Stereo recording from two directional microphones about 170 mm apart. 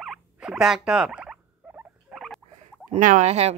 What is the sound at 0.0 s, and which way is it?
Rodents, centre (ahead or behind).